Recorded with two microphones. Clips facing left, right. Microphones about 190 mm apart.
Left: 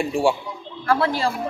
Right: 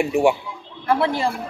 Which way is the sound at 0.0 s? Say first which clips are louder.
Right 3 dB; 20° right (ahead or behind).